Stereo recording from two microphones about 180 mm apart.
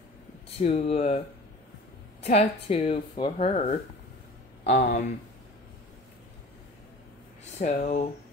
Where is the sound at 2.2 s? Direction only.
35° left (ahead or behind).